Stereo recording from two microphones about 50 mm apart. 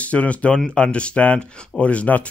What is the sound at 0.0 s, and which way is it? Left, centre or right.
Speech, left.